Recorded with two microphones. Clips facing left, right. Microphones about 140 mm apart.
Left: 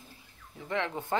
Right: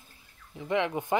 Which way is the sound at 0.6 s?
15° right (ahead or behind).